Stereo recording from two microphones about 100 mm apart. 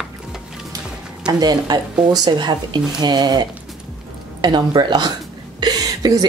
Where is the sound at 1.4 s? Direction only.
45° right (ahead or behind).